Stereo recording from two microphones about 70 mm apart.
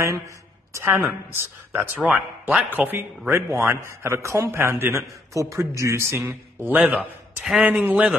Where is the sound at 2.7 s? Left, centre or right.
Right.